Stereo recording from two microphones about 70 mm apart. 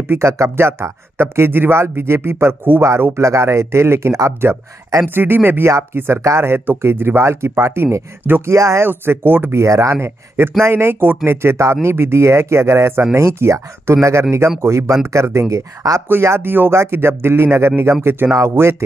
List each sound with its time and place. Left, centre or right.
0.1 s speech: right
3.2 s speech: right
8.8 s speech: right
9.6 s speech: right
16.1 s speech: right